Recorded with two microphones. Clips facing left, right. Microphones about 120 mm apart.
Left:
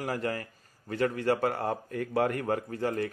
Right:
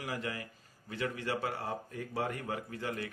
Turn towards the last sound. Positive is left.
turn(degrees=45)  # may be behind; listen again after turning